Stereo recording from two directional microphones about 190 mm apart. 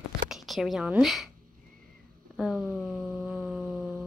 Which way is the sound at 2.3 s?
5° right (ahead or behind).